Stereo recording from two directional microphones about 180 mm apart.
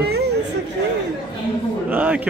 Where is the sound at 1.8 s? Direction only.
5° right (ahead or behind).